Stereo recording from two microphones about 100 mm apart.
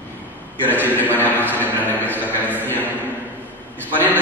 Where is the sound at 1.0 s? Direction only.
15° left (ahead or behind).